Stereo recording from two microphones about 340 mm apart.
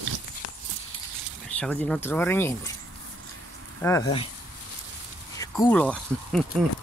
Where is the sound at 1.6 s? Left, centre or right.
Centre.